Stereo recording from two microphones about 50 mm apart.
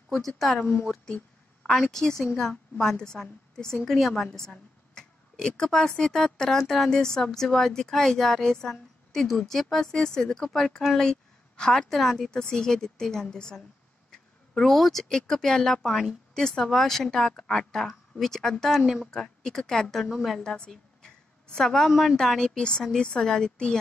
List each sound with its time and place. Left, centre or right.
0.6 s speech: left
1.7 s speech: centre
3.8 s a woman's voice: centre
4.3 s speech: centre
20.1 s a woman's voice: centre
20.3 s speech: centre
21.0 s a sound: centre
22.1 s speech: centre
22.6 s speech: centre